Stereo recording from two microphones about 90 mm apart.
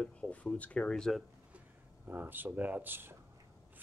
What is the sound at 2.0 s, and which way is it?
Speech, 20° right (ahead or behind).